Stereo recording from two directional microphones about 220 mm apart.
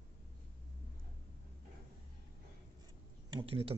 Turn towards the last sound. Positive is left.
turn(degrees=-20)  # may be behind; listen again after turning